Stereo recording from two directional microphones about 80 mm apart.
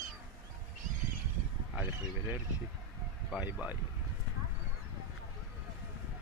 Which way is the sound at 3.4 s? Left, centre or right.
Centre.